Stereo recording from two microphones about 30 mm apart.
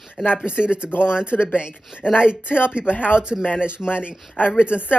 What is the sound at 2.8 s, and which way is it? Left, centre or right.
Speech, left.